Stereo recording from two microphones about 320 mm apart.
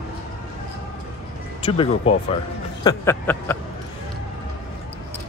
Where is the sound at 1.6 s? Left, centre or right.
Centre.